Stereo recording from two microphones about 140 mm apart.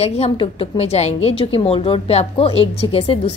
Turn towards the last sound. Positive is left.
turn(degrees=40)  # may be behind; listen again after turning